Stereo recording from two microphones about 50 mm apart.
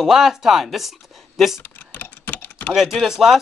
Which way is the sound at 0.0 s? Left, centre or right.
Centre.